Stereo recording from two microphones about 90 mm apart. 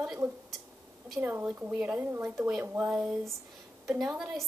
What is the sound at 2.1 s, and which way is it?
Speech, 30° right (ahead or behind).